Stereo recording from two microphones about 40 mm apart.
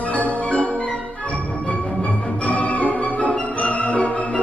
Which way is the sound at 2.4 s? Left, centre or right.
Left.